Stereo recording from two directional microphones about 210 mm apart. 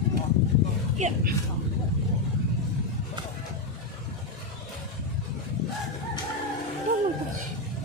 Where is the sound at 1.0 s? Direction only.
35° right (ahead or behind).